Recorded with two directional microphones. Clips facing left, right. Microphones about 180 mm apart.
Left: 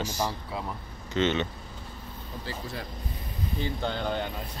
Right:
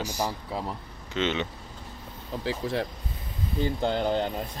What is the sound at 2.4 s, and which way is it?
Speech, 90° right.